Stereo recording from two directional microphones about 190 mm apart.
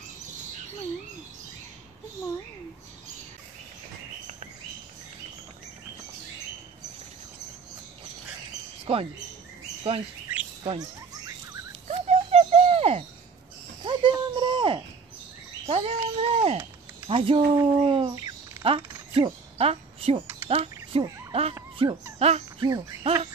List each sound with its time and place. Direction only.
8.9 s speech: 30° right (ahead or behind)
10.6 s speech: 20° right (ahead or behind)
11.9 s owl: 35° right (ahead or behind)
13.8 s a sound: 25° right (ahead or behind)
17.1 s speech: 30° right (ahead or behind)
17.6 s bird: 30° right (ahead or behind)
18.7 s mechanisms: 25° right (ahead or behind)
20.4 s cricket: 30° right (ahead or behind)
21.3 s a sound: 30° right (ahead or behind)
21.8 s speech: 30° right (ahead or behind)
22.2 s a sound: 35° right (ahead or behind)
23.0 s owl: 35° right (ahead or behind)